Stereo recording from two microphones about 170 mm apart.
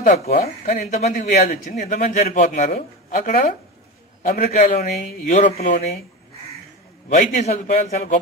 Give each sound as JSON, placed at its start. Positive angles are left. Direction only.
{"t": 0.0, "sound": "speech", "side_deg": 40}
{"t": 0.7, "sound": "a man's voice", "side_deg": 55}
{"t": 1.0, "sound": "speech", "side_deg": 40}
{"t": 7.1, "sound": "speech", "side_deg": 40}